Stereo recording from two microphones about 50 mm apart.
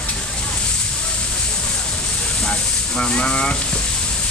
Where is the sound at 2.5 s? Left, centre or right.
Centre.